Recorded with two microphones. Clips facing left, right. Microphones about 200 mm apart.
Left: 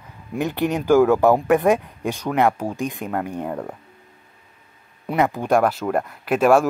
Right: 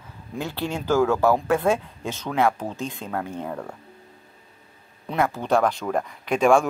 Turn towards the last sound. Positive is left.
turn(degrees=5)  # may be behind; listen again after turning